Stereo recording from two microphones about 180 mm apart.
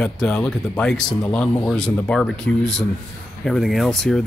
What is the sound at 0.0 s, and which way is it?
Speech, 5° left (ahead or behind).